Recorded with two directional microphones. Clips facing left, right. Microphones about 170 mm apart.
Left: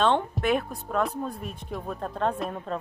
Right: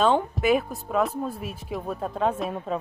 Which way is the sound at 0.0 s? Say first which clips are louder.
Right 2 dB; 5° right (ahead or behind).